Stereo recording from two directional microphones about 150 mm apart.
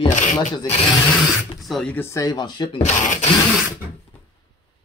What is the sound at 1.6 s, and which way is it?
Speech, 5° left (ahead or behind).